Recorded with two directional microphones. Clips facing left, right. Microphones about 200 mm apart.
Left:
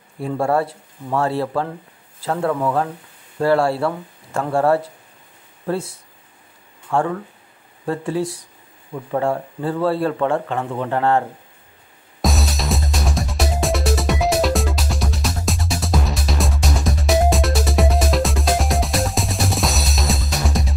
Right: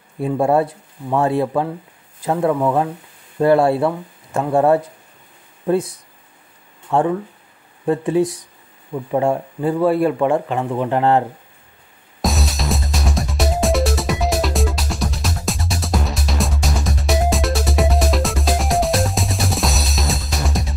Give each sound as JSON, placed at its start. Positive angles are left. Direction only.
{"t": 0.4, "sound": "speech", "side_deg": -20}
{"t": 12.2, "sound": "music", "side_deg": 0}